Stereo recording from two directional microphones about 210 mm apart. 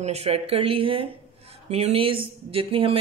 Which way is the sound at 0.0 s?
30° right (ahead or behind).